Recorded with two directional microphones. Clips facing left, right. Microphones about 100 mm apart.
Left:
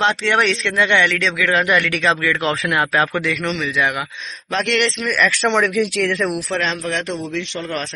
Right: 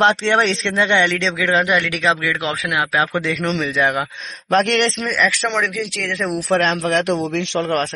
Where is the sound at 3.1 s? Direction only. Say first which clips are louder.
Right 1 dB; 30° right (ahead or behind).